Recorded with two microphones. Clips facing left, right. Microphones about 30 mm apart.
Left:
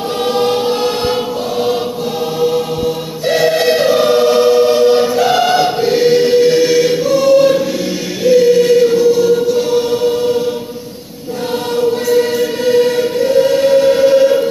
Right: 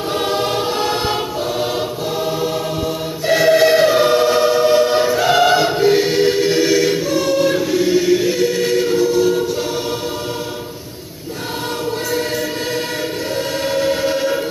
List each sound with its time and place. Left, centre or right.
0.4 s choir: centre
3.3 s choir: left
3.9 s choir: centre
4.3 s choir: left
4.6 s choir: centre
6.5 s choir: left
13.6 s choir: left